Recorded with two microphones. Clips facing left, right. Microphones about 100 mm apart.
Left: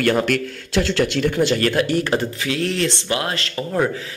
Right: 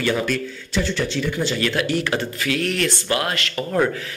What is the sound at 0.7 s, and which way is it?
Speech, 90° left.